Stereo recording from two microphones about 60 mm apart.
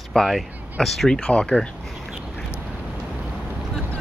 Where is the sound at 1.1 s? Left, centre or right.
Centre.